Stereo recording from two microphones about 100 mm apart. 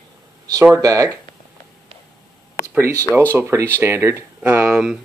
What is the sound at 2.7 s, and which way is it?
Speech, 25° right (ahead or behind).